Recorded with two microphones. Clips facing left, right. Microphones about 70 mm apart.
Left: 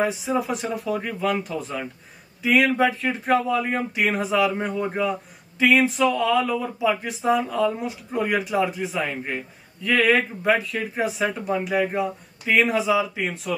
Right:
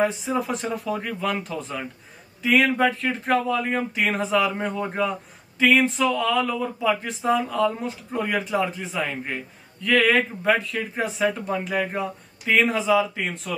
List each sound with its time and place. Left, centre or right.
0.0 s speech: centre